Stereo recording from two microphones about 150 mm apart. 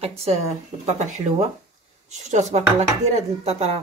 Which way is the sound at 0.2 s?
45° right (ahead or behind).